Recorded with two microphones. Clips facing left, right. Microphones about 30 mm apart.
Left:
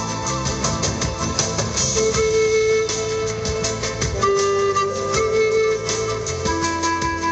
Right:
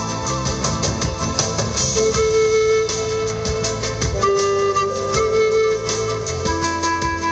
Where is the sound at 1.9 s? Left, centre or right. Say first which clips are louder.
Right 2 dB; right.